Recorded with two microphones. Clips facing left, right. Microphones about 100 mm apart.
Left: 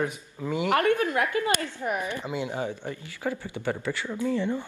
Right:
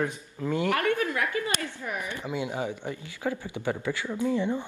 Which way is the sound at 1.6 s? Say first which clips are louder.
Left 4 dB; 20° left (ahead or behind).